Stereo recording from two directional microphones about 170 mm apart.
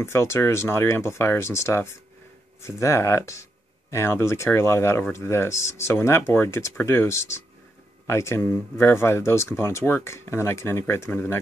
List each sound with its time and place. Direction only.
0.0 s speech: 15° left (ahead or behind)